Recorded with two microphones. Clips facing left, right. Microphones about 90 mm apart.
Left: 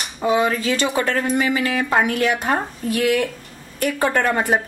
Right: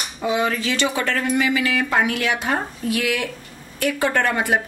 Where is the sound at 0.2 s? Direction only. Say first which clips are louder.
Left 3 dB; 40° left (ahead or behind).